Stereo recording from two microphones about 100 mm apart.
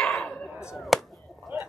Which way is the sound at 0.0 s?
5° left (ahead or behind).